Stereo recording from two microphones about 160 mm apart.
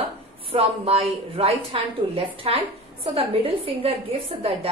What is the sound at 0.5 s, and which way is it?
A woman's voice, 35° right (ahead or behind).